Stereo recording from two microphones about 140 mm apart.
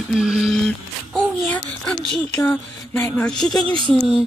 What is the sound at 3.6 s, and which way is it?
Speech, 35° right (ahead or behind).